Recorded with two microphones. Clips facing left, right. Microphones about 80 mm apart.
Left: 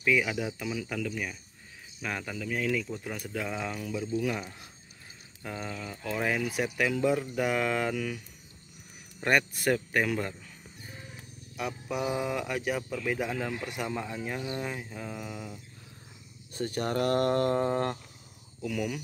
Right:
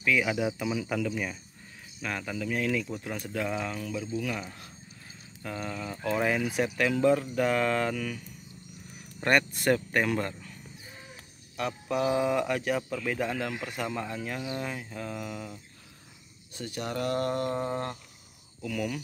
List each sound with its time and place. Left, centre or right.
0.2 s speech: centre
2.0 s speech: centre
3.7 s speech: centre
5.7 s speech: centre
9.2 s speech: centre
11.5 s speech: centre
16.5 s speech: left
18.6 s speech: centre